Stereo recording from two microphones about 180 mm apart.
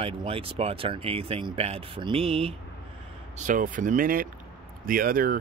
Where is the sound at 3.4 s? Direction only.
45° right (ahead or behind).